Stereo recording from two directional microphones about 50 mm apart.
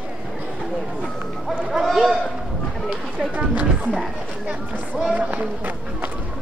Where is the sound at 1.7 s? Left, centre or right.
Centre.